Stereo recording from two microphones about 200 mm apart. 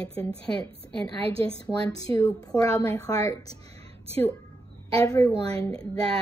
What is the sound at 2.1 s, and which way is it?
A woman's voice, 15° left (ahead or behind).